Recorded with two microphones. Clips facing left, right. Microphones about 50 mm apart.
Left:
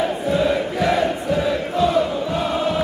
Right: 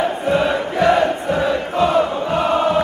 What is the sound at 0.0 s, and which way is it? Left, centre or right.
Chant, right.